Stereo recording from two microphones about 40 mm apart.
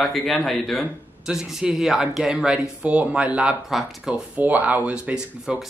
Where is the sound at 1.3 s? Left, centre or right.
Centre.